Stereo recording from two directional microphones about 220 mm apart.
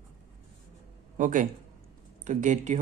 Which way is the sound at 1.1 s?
35° right (ahead or behind).